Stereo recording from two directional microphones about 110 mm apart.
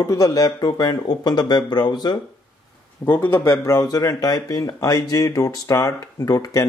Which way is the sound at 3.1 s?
20° left (ahead or behind).